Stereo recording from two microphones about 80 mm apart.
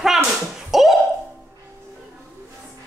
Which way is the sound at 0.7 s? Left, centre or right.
Centre.